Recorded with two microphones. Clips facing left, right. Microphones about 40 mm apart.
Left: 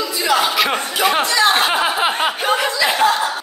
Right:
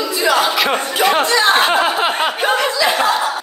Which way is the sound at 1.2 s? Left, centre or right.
Right.